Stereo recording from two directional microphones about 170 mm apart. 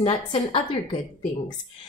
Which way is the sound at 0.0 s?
35° left (ahead or behind).